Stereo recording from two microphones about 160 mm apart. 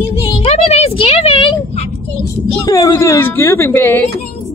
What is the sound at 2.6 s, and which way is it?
A woman's voice, 20° left (ahead or behind).